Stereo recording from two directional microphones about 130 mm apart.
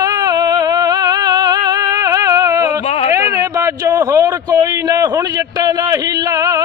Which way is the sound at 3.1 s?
25° right (ahead or behind).